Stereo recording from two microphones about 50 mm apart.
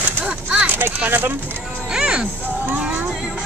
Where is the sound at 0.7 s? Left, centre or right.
Right.